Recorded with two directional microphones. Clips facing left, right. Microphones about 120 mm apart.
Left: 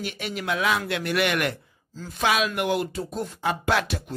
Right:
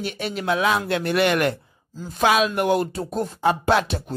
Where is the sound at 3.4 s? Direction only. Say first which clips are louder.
Right 5 dB; 30° right (ahead or behind).